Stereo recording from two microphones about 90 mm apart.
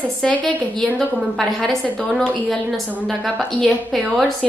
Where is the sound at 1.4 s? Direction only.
Centre (ahead or behind).